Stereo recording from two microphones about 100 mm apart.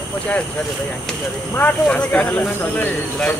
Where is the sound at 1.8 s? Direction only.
10° left (ahead or behind).